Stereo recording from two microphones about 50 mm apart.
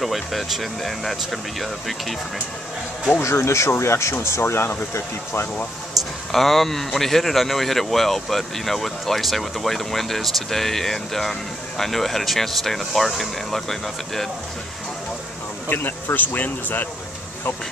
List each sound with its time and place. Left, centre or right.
0.0 s speech: centre
3.2 s speech: left
5.9 s speech: centre
15.7 s speech: left